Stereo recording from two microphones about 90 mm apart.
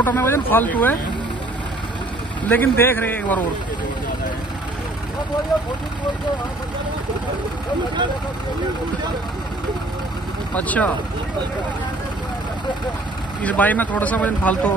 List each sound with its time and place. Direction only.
0.0 s speech: 25° left (ahead or behind)
2.5 s speech: 20° left (ahead or behind)
10.5 s speech: 15° left (ahead or behind)
13.4 s speech: 15° left (ahead or behind)